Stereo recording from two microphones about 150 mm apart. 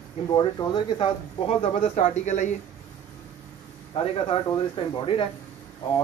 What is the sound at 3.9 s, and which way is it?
Speech, 40° left (ahead or behind).